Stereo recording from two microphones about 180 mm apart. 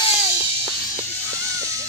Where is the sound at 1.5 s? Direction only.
15° right (ahead or behind).